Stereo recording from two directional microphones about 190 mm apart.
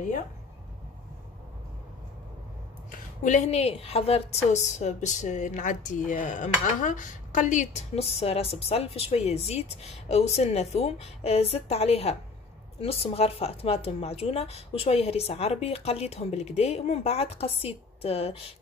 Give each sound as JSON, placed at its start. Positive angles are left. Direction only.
{"t": 2.9, "sound": "a woman's voice", "side_deg": 40}